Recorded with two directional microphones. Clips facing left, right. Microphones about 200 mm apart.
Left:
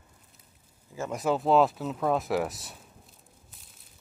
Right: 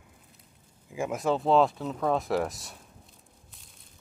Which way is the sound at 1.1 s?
Centre (ahead or behind).